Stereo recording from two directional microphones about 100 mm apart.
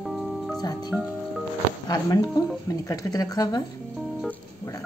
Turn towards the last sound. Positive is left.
turn(degrees=40)  # may be behind; listen again after turning